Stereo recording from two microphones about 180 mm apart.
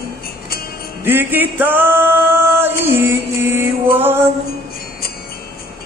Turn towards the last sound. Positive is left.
turn(degrees=-10)  # may be behind; listen again after turning